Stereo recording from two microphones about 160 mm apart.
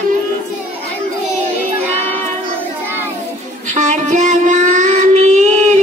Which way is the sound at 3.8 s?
50° right (ahead or behind).